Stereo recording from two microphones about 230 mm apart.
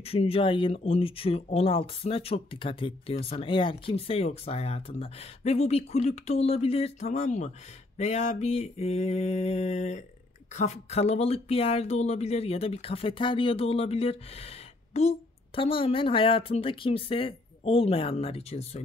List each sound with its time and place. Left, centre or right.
0.0 s speech: left